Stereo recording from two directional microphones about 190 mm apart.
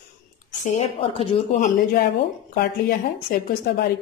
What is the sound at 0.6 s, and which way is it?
A woman's voice, 30° left (ahead or behind).